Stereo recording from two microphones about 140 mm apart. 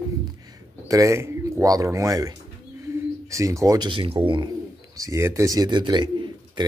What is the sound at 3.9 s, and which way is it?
Speech, 40° right (ahead or behind).